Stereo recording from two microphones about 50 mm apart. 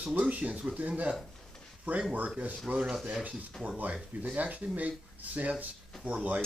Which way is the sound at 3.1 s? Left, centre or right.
Right.